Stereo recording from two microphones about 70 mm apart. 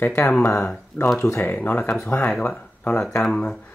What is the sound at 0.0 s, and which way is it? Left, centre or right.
Speech, left.